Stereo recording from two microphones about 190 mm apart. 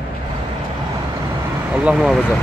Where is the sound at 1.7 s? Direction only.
5° right (ahead or behind).